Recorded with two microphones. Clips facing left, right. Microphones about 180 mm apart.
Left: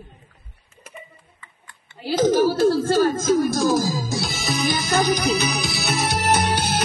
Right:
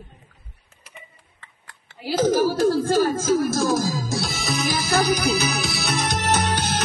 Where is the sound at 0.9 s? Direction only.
80° right.